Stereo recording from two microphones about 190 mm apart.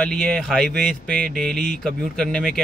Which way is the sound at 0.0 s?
5° left (ahead or behind).